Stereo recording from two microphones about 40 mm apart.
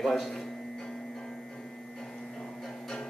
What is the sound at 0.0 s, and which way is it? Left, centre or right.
Speech, centre.